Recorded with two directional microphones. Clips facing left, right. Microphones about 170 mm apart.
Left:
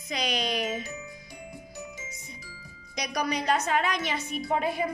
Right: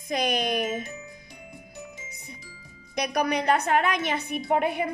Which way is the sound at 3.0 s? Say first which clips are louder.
Right 4 dB; 55° right (ahead or behind).